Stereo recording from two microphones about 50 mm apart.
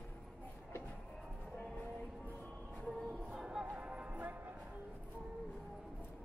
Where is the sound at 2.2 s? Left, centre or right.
Left.